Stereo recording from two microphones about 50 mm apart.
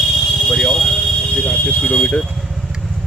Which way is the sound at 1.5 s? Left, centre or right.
Left.